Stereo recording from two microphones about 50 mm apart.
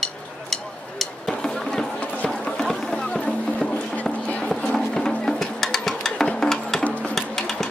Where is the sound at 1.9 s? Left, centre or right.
Centre.